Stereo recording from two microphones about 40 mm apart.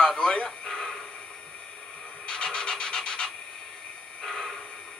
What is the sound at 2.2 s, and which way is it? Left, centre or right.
Rub, centre.